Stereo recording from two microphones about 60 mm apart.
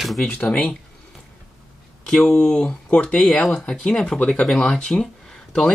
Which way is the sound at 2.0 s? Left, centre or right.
Centre.